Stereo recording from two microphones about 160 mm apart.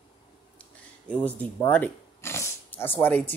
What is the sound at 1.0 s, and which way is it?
Speech, 10° left (ahead or behind).